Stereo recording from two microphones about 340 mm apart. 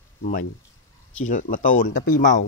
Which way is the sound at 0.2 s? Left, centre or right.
Left.